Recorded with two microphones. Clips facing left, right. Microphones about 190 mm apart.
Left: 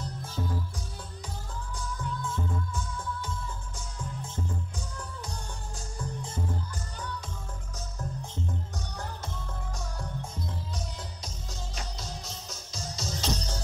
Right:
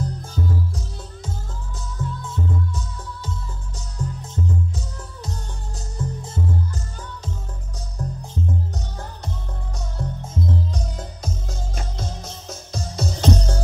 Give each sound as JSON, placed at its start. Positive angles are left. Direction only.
{"t": 0.0, "sound": "music", "side_deg": -45}
{"t": 2.0, "sound": "music", "side_deg": -40}
{"t": 3.7, "sound": "music", "side_deg": -40}
{"t": 6.0, "sound": "music", "side_deg": -20}
{"t": 8.7, "sound": "music", "side_deg": -20}
{"t": 11.0, "sound": "music", "side_deg": -50}